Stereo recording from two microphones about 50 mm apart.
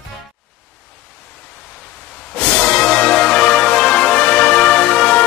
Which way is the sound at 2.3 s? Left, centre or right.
Left.